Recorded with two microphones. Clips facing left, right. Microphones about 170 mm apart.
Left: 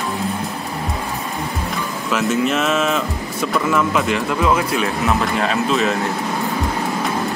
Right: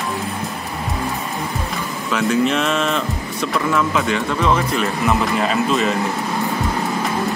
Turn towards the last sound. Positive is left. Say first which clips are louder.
# even
turn(degrees=0)  # may be behind; listen again after turning